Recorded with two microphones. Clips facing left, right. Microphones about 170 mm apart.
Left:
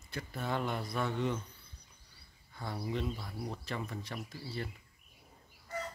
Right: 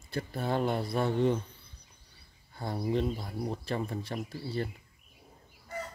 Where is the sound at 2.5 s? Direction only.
35° right (ahead or behind).